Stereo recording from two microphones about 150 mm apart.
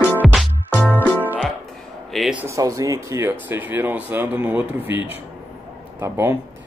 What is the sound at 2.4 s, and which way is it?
Speech, 20° right (ahead or behind).